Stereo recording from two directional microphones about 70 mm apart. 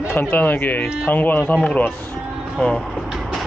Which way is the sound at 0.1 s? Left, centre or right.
Left.